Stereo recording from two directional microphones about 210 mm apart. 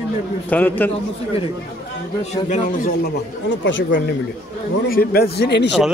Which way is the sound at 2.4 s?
35° left (ahead or behind).